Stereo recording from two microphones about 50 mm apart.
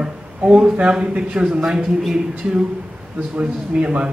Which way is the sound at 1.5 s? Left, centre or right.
Centre.